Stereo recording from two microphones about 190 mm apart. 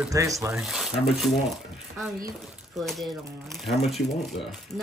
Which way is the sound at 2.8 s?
Centre (ahead or behind).